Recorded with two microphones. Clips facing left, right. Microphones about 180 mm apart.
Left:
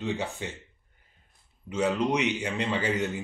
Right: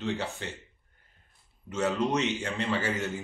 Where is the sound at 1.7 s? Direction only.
15° left (ahead or behind).